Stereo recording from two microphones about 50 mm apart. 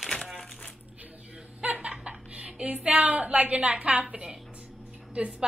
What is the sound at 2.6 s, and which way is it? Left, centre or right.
A woman's voice, right.